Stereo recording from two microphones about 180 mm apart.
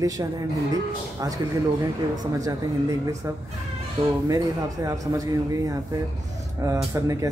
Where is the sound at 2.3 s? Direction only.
20° right (ahead or behind).